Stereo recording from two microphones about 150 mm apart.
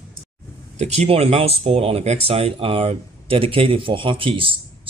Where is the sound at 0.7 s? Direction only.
45° right (ahead or behind).